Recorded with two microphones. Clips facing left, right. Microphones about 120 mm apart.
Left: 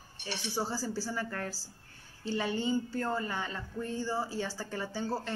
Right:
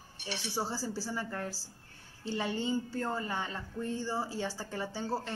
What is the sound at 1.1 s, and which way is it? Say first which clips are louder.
A woman's voice: left 1 dB; 20° right (ahead or behind).